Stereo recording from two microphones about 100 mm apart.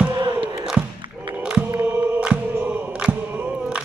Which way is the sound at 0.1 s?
50° right (ahead or behind).